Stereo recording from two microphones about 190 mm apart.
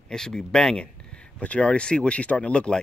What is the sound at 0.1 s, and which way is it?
Speech, 5° left (ahead or behind).